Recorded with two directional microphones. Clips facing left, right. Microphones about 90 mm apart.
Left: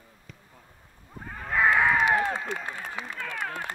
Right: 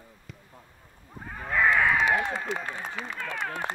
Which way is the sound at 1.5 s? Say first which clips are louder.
Left 1 dB; 20° left (ahead or behind).